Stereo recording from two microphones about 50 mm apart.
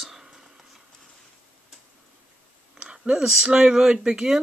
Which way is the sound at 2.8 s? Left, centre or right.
Right.